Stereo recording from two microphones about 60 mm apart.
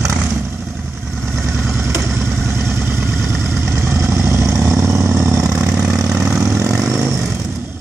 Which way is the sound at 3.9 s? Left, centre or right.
Right.